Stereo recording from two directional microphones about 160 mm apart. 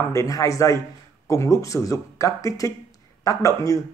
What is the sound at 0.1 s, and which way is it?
Speech, 20° left (ahead or behind).